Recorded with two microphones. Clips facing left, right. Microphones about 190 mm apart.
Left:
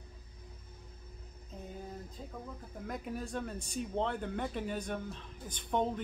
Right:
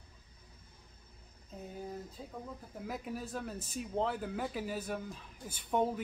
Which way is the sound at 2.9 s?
5° right (ahead or behind).